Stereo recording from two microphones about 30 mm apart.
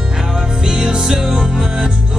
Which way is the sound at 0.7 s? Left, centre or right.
Right.